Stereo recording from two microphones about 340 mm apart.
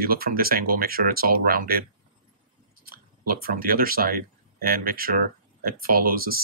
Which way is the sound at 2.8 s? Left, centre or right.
Right.